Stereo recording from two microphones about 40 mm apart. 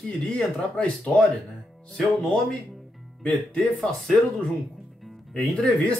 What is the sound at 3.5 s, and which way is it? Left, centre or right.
Speech, centre.